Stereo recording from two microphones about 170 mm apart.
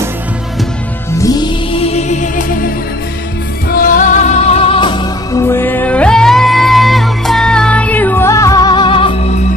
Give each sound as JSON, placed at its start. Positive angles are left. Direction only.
{"t": 1.1, "sound": "music", "side_deg": 20}
{"t": 3.7, "sound": "music", "side_deg": 55}